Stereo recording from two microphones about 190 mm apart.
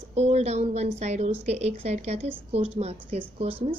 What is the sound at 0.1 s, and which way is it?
A woman's voice, 35° right (ahead or behind).